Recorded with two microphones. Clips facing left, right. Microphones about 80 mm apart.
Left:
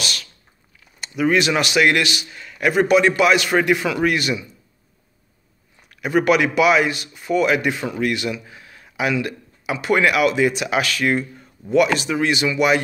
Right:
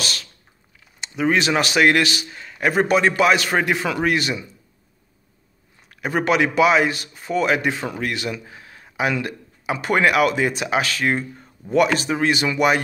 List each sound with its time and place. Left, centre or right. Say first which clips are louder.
0.0 s a sound: even; right
1.0 s speech: left 1 dB; right
5.9 s speech: left 3 dB; right